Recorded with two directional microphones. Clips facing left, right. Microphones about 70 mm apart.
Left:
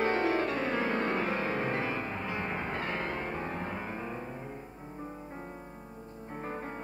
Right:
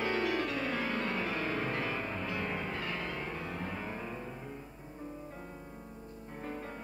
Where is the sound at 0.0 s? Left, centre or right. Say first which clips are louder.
Left 4 dB; left.